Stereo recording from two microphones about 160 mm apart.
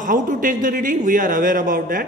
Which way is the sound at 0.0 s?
55° right (ahead or behind).